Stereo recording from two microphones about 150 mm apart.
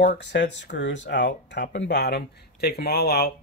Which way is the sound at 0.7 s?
90° left.